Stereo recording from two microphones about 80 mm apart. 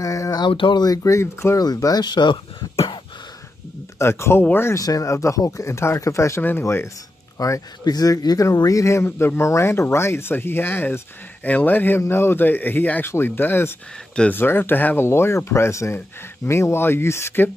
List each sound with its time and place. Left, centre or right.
0.0 s a sound: left
0.4 s speech: left
0.8 s speech: left
1.6 s speech: left
4.0 s speech: left
4.7 s speech: left
7.8 s speech: left